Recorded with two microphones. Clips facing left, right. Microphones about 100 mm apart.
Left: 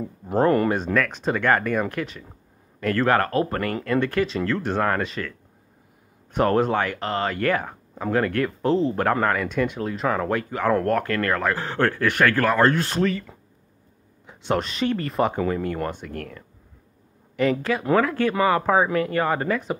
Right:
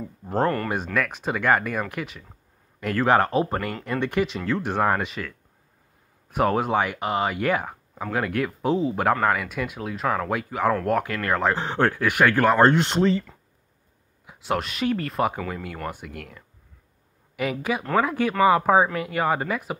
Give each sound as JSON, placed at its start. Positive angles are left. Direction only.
{"t": 0.0, "sound": "speech", "side_deg": 10}
{"t": 0.9, "sound": "speech", "side_deg": -10}
{"t": 6.3, "sound": "speech", "side_deg": -5}
{"t": 14.2, "sound": "speech", "side_deg": -5}